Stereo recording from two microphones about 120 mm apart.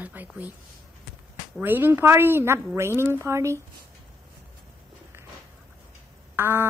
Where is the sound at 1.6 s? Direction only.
15° right (ahead or behind).